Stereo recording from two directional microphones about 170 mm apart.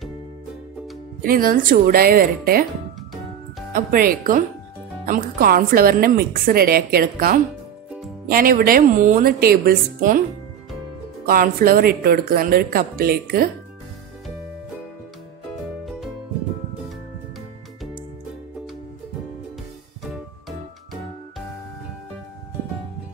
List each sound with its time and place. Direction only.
1.2 s a woman's voice: 55° right (ahead or behind)
3.7 s a woman's voice: 55° right (ahead or behind)
11.2 s a woman's voice: 60° right (ahead or behind)